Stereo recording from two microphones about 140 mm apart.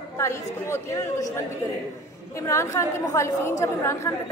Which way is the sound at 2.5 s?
20° left (ahead or behind).